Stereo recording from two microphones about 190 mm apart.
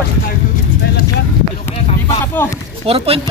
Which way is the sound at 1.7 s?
30° left (ahead or behind).